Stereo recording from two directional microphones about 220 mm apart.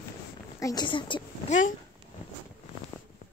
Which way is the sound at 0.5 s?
15° left (ahead or behind).